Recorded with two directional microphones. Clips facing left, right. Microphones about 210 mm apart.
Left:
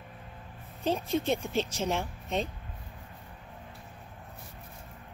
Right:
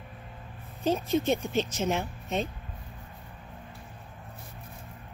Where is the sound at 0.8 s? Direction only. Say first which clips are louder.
Right 3 dB; 5° right (ahead or behind).